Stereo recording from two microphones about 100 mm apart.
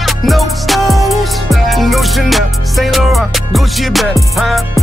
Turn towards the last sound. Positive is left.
turn(degrees=0)  # may be behind; listen again after turning